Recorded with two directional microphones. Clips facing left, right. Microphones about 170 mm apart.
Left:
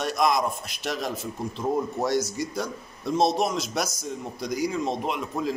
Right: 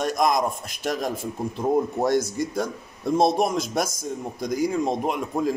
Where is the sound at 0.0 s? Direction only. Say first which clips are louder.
Right 2 dB; 45° right (ahead or behind).